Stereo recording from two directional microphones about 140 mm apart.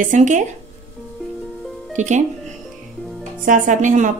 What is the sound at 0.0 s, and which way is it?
Speech, 60° right (ahead or behind).